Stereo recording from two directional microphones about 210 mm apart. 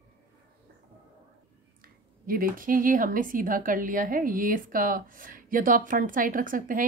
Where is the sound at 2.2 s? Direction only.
45° right (ahead or behind).